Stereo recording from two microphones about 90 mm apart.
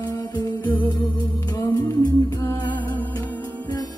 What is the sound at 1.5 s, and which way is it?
Music, 50° left (ahead or behind).